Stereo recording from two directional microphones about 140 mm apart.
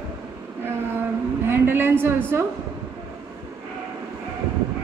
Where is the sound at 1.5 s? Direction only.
15° right (ahead or behind).